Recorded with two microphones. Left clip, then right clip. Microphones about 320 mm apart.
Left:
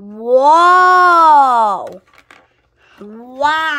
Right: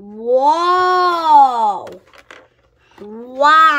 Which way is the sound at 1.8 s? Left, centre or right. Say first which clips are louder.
Left 4 dB; centre.